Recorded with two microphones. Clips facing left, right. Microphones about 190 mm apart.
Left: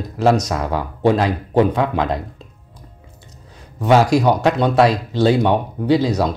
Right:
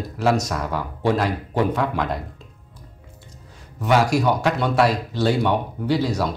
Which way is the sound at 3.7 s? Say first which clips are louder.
Left 5 dB; 25° left (ahead or behind).